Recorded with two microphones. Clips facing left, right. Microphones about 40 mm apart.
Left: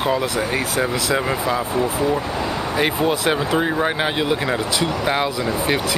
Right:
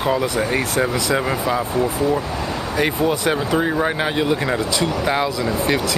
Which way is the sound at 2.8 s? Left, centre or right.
Left.